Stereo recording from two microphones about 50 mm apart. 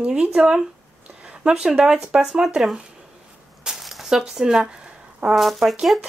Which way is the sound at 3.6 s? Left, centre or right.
Centre.